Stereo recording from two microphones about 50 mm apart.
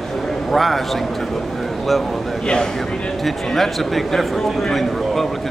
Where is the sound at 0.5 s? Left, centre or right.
Centre.